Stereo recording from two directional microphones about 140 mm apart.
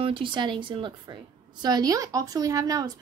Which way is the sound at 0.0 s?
40° right (ahead or behind).